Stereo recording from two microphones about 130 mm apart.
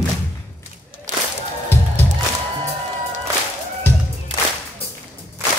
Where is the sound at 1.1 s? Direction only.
70° right (ahead or behind).